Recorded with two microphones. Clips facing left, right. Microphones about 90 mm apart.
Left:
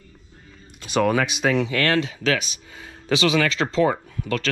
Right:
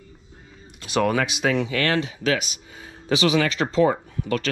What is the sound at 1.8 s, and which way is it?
Speech, 20° right (ahead or behind).